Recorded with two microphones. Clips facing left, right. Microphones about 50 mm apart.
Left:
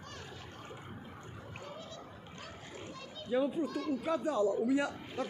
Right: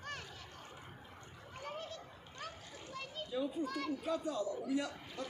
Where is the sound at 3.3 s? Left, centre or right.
Left.